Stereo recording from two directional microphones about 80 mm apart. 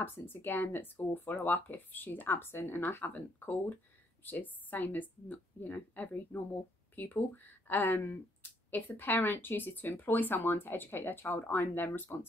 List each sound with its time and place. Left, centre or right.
0.0 s speech: left